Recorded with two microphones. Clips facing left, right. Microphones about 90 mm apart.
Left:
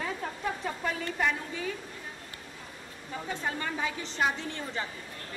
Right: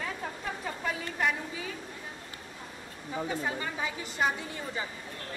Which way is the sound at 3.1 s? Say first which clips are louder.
Right 2 dB; 10° right (ahead or behind).